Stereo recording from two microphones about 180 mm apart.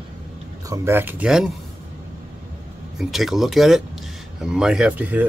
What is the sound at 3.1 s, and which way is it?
Speech, centre (ahead or behind).